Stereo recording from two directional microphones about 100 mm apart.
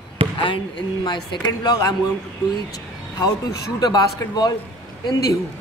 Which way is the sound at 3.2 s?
40° left (ahead or behind).